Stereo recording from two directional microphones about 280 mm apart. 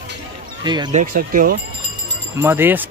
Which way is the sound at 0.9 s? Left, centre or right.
Right.